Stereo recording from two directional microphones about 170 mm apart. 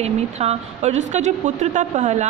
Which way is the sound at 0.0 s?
40° right (ahead or behind).